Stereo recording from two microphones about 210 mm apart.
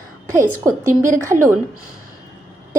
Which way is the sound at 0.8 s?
40° right (ahead or behind).